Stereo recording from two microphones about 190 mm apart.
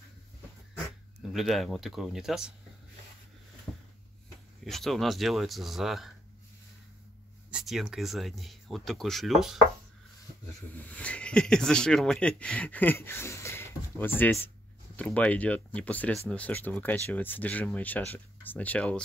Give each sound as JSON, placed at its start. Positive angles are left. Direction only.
{"t": 1.3, "sound": "speech", "side_deg": 0}
{"t": 4.6, "sound": "speech", "side_deg": 0}
{"t": 7.5, "sound": "speech", "side_deg": -5}
{"t": 10.8, "sound": "speech", "side_deg": 5}